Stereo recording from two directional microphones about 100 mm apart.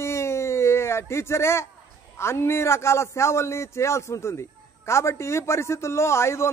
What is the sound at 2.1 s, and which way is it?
A man's voice, 25° left (ahead or behind).